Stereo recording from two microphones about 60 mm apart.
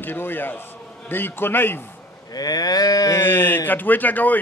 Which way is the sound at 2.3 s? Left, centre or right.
Left.